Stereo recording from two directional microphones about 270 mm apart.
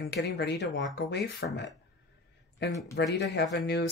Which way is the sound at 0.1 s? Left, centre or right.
Left.